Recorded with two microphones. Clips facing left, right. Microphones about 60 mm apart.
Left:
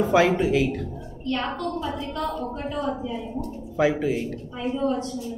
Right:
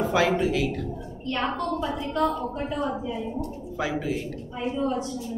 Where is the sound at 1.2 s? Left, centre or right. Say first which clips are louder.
Even; centre.